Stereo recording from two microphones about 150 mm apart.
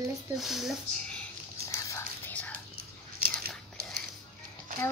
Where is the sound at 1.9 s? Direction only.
15° left (ahead or behind).